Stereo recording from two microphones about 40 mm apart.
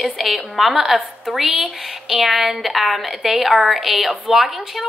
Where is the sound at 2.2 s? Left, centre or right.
Centre.